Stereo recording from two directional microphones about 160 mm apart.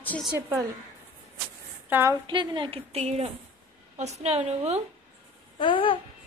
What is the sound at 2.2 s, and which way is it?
A woman's voice, 30° right (ahead or behind).